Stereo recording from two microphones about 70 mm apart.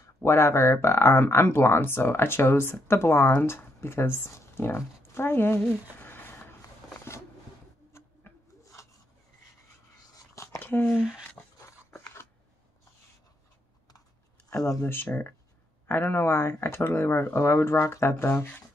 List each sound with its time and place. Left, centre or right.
0.0 s speech: left
8.0 s rodents: left
10.3 s a sound: left
10.6 s a sound: left
11.0 s speech: centre
14.9 s speech: left